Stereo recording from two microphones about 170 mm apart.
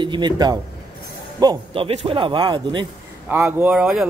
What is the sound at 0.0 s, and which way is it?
Speech, 25° right (ahead or behind).